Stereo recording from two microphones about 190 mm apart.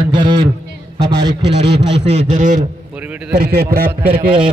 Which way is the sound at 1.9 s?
35° right (ahead or behind).